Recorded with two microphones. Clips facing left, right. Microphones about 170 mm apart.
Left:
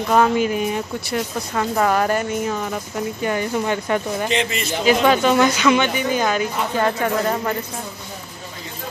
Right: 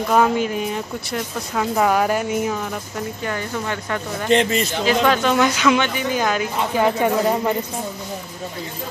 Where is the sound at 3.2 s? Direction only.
15° left (ahead or behind); by 7.6 s 15° right (ahead or behind).